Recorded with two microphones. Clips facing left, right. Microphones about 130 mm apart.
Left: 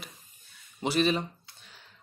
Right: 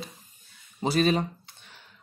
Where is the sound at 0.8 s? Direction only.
40° right (ahead or behind).